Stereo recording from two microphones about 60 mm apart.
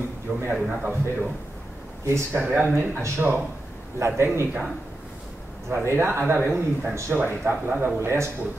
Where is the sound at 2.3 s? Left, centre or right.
Right.